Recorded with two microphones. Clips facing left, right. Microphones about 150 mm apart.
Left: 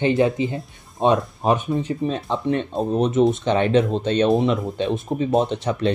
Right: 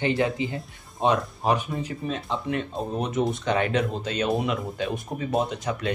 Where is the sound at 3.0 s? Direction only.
25° left (ahead or behind).